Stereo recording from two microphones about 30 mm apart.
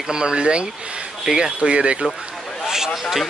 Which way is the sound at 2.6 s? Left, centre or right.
Centre.